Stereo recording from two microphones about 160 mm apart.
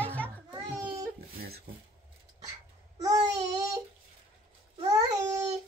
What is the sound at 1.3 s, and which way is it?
Speech, 75° right (ahead or behind).